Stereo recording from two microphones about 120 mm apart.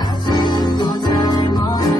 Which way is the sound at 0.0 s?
35° left (ahead or behind).